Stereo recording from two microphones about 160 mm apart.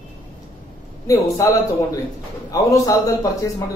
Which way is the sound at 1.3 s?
20° left (ahead or behind).